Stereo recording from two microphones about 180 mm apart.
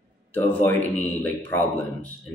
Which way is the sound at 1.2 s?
10° left (ahead or behind).